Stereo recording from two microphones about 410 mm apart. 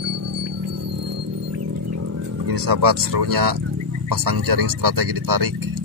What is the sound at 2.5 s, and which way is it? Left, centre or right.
Speech, right.